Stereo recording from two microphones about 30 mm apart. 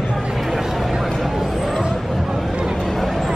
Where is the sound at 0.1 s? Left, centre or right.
Centre.